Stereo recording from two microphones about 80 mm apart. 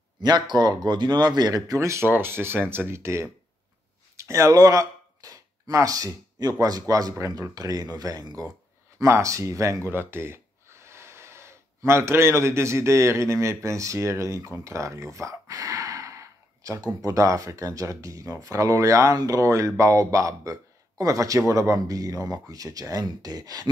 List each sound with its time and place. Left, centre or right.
0.2 s speech: right
8.9 s speech: right